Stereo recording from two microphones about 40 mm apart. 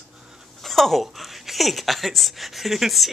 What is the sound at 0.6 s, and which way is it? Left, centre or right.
Speech, centre.